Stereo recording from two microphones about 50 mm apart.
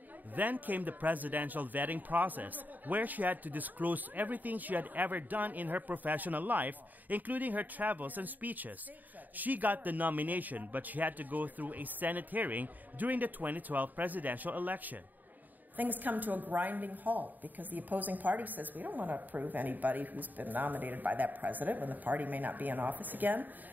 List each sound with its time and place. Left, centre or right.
0.4 s speech: right